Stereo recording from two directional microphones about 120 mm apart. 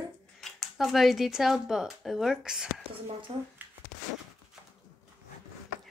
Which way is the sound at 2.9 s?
50° right (ahead or behind).